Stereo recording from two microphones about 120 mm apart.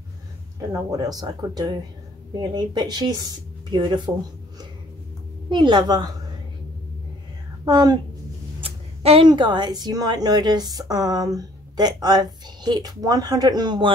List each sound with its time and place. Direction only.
0.9 s a woman's voice: 35° right (ahead or behind)
5.5 s a woman's voice: 40° right (ahead or behind)
7.6 s a woman's voice: 35° right (ahead or behind)
8.6 s a sound: 55° right (ahead or behind)
9.3 s a woman's voice: 40° right (ahead or behind)